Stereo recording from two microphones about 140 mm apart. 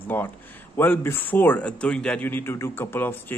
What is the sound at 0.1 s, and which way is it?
A man's voice, 15° left (ahead or behind).